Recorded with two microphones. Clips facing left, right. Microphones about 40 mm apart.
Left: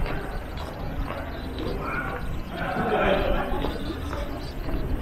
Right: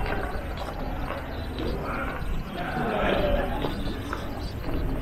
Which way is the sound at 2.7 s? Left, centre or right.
Left.